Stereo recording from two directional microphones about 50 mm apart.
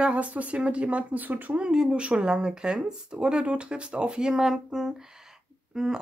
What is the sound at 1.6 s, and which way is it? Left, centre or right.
Speech, centre.